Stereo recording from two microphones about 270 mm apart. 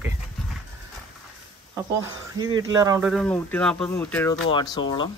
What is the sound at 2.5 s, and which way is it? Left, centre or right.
Speech, centre.